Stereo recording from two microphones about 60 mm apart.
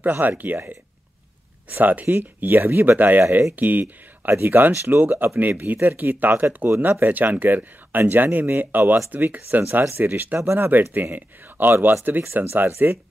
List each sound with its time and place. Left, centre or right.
0.0 s speech: right
4.3 s speech: right
10.7 s speech: right